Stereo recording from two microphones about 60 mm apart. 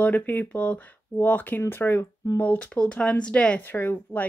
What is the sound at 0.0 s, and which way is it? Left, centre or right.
Speech, left.